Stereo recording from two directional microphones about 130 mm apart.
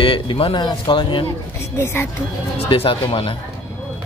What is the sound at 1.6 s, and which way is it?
Speech, 20° left (ahead or behind).